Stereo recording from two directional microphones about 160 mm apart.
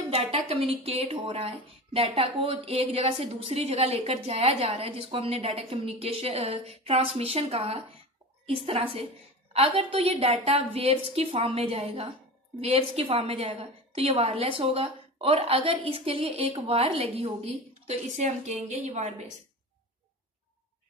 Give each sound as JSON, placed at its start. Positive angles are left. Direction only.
{"t": 0.1, "sound": "a woman's voice", "side_deg": -40}